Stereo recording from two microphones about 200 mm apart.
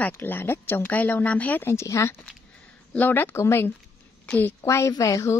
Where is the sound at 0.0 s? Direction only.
10° left (ahead or behind).